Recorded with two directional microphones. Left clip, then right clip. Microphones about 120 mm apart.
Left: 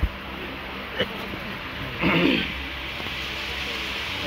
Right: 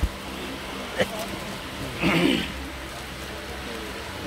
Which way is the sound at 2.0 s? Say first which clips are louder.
Left 1 dB; 5° right (ahead or behind).